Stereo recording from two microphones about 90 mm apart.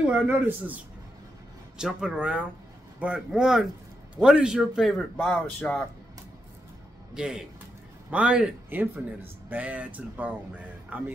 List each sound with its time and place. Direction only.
0.1 s speech: 20° right (ahead or behind)
1.8 s speech: 5° right (ahead or behind)
5.2 s speech: 10° left (ahead or behind)
7.2 s speech: 10° right (ahead or behind)